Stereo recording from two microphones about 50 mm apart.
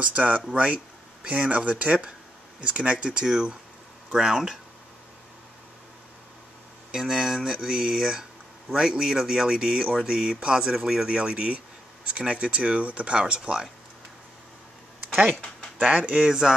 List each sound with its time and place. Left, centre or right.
0.1 s speech: right
3.3 s speech: centre
6.9 s speech: centre
15.8 s speech: right